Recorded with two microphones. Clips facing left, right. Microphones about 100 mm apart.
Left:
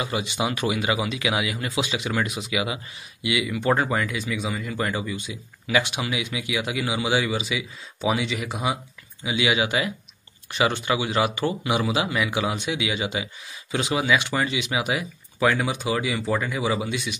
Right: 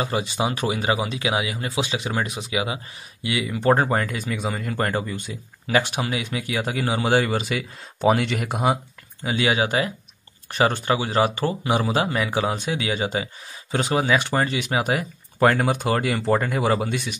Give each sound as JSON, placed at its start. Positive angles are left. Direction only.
{"t": 0.0, "sound": "speech", "side_deg": -35}